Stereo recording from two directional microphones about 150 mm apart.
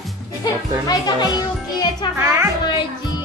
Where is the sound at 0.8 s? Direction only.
25° left (ahead or behind).